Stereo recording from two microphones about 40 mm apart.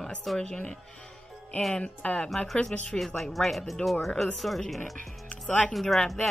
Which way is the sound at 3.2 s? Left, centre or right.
Centre.